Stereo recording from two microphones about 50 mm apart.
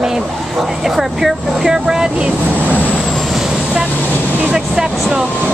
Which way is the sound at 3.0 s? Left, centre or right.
Centre.